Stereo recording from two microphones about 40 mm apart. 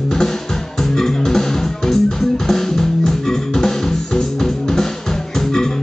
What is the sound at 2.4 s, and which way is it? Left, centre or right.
Music, centre.